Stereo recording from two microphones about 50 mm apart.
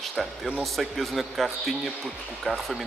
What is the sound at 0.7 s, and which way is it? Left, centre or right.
Speech, centre.